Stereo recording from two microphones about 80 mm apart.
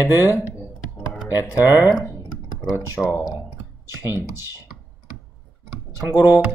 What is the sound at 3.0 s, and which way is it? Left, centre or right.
Speech, centre.